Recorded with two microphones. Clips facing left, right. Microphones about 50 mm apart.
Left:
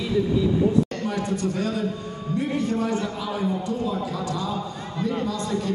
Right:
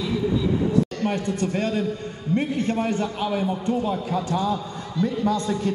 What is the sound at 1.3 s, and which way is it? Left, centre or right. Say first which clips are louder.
A man's voice: right 1 dB; right.